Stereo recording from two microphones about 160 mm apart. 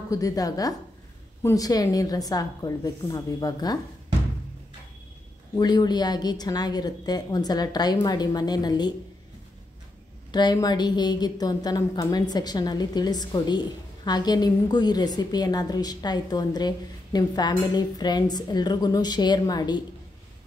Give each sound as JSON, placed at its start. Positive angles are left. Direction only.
{"t": 0.1, "sound": "a woman's voice", "side_deg": 20}
{"t": 5.6, "sound": "a woman's voice", "side_deg": 25}
{"t": 10.3, "sound": "a woman's voice", "side_deg": 25}